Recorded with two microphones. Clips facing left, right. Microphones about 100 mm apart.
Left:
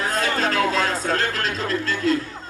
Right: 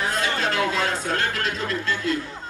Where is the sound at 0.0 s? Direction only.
40° left (ahead or behind).